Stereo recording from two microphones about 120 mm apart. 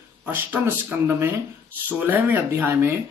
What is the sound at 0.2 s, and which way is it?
A man's voice, 15° right (ahead or behind).